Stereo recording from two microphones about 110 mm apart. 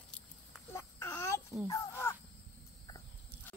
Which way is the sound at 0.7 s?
25° left (ahead or behind).